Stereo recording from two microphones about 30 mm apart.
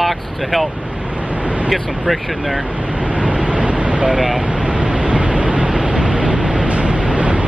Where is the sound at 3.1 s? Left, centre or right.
Right.